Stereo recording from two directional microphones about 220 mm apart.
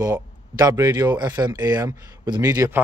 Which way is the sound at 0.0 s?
15° right (ahead or behind).